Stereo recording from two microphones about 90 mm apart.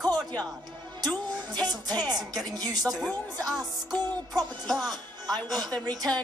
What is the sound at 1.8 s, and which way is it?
Speech, 45° right (ahead or behind).